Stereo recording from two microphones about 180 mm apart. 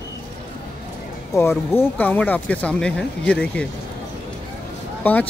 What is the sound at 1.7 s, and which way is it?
Speech, 10° left (ahead or behind).